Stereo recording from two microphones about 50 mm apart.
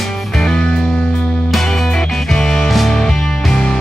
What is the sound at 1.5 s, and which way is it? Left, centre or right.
Music, centre.